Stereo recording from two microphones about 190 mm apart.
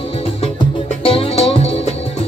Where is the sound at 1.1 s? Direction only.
30° left (ahead or behind).